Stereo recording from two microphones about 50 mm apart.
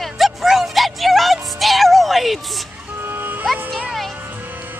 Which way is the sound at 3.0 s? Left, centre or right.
Right.